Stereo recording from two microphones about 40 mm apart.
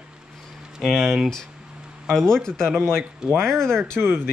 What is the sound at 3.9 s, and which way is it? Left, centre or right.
Speech, right.